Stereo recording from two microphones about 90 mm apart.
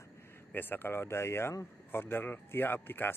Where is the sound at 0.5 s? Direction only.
20° left (ahead or behind).